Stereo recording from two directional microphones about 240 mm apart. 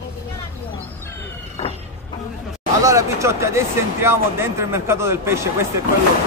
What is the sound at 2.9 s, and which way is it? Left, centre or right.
Speech, centre.